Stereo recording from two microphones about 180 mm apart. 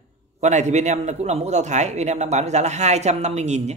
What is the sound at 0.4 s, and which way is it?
A man's voice, 40° right (ahead or behind).